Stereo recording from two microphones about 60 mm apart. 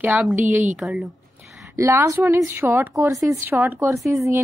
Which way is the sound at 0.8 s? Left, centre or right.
Centre.